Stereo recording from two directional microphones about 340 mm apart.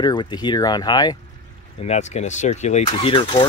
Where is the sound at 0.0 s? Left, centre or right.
Centre.